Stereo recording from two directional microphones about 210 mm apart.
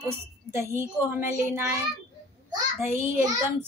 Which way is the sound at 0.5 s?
10° right (ahead or behind).